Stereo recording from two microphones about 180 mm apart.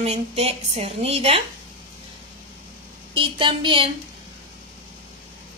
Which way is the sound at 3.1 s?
30° right (ahead or behind).